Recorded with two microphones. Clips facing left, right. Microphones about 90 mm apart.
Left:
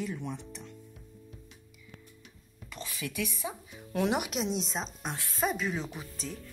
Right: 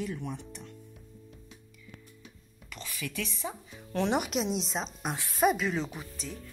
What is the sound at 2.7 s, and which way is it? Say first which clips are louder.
Speech: left 1 dB; 20° left (ahead or behind).